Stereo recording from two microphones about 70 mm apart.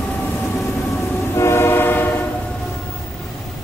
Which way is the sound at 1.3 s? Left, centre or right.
Left.